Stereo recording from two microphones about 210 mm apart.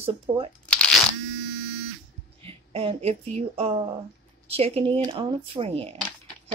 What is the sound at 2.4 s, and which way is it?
Speech, 25° right (ahead or behind).